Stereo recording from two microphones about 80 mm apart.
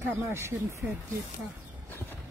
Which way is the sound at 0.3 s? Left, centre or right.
Right.